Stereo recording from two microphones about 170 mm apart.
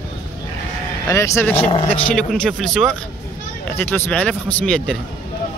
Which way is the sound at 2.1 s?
Centre (ahead or behind).